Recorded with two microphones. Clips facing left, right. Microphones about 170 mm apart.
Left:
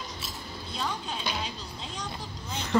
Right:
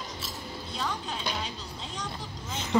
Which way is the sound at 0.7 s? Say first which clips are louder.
Left 1 dB; 5° left (ahead or behind).